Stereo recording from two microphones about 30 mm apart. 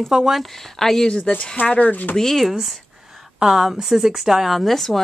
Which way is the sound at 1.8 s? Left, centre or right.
Left.